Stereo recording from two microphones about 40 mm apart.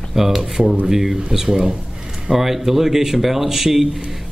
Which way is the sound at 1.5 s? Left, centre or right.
Centre.